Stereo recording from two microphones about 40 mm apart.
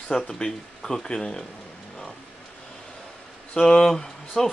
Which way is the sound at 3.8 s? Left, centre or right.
Centre.